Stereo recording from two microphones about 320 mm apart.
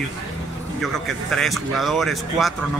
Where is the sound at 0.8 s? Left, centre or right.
Centre.